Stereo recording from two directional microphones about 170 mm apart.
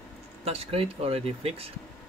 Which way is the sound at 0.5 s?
35° right (ahead or behind).